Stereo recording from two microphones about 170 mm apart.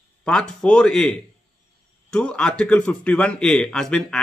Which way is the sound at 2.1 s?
5° left (ahead or behind).